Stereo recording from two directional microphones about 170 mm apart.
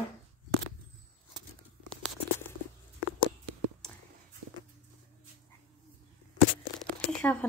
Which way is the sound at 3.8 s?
5° left (ahead or behind).